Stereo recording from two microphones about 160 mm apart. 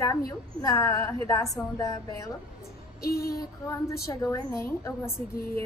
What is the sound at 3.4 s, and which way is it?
A woman's voice, 20° left (ahead or behind).